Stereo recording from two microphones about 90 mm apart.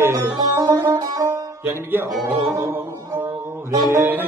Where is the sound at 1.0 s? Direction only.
50° right (ahead or behind).